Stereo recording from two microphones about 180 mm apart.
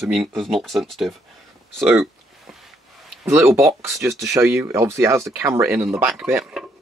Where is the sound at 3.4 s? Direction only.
Centre (ahead or behind).